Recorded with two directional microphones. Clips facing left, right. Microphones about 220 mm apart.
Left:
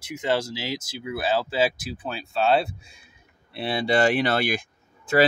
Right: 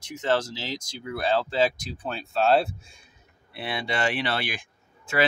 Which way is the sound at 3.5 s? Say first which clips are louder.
Left 7 dB; 30° left (ahead or behind).